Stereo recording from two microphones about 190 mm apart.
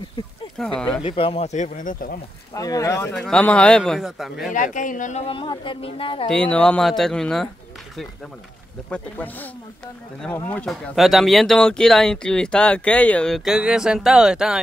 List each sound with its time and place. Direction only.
0.7 s speech: 5° left (ahead or behind)
1.0 s a woman's voice: 30° left (ahead or behind); by 2.1 s 45° left (ahead or behind)
2.5 s speech: 20° left (ahead or behind)
3.2 s speech: 5° left (ahead or behind)
4.5 s a woman's voice: 45° left (ahead or behind)
6.3 s speech: 5° left (ahead or behind)
8.9 s speech: 10° left (ahead or behind)